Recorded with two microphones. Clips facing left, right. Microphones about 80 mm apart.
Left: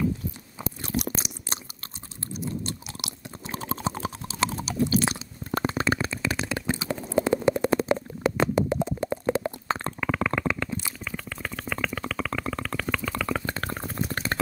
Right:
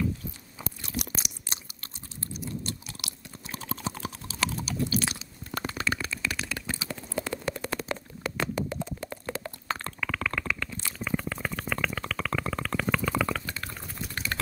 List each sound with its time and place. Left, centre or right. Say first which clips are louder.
0.8 s chewing: left 7 dB; left
11.1 s stomach rumble: right 7 dB; centre
13.5 s boiling: left 7 dB; left
14.3 s a sound: left 5 dB; left